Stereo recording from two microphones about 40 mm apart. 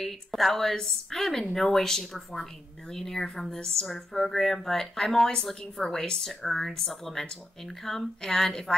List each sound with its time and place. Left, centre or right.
0.0 s speech: centre
1.2 s speech: left
1.5 s speech: centre